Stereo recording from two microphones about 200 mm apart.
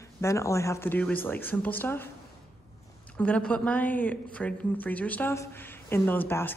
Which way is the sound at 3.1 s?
5° left (ahead or behind).